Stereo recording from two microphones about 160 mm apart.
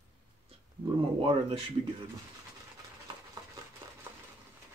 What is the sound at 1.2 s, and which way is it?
Speech, 35° right (ahead or behind).